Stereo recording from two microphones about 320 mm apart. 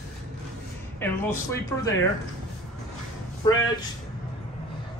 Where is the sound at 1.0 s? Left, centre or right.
Centre.